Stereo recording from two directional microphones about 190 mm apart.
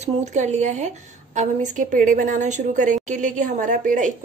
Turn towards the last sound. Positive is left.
turn(degrees=-40)  # may be behind; listen again after turning